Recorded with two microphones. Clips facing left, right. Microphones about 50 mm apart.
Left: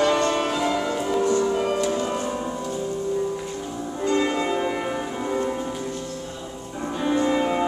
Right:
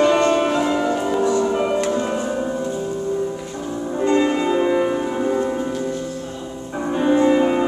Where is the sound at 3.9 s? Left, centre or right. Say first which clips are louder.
Right 5 dB; right; by 5.1 s centre.